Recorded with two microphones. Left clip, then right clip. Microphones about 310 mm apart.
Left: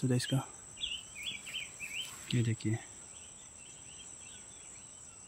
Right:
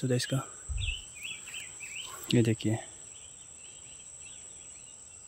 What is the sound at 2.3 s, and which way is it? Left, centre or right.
Speech, centre.